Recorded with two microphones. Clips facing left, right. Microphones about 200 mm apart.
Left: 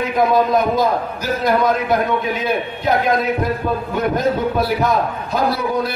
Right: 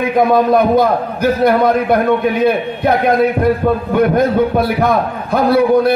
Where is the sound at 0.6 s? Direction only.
60° right (ahead or behind).